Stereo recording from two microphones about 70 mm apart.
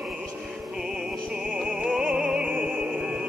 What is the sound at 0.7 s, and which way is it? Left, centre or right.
Music, centre.